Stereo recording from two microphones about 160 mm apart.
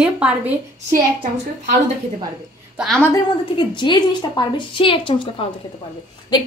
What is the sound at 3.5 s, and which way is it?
A woman's voice, 30° left (ahead or behind).